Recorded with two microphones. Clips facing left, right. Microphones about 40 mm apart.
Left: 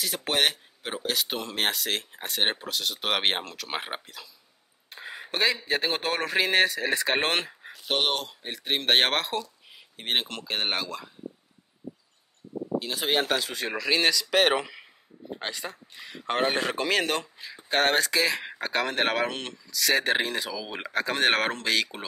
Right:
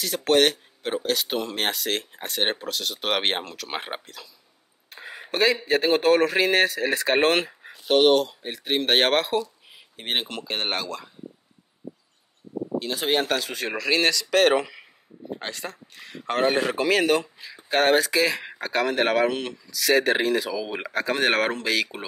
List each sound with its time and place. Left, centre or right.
0.0 s speech: centre
4.8 s a sound: centre
5.7 s speech: centre
12.7 s speech: centre